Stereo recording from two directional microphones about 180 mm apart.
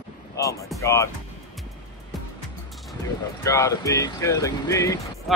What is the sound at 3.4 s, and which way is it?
Speech, 15° left (ahead or behind).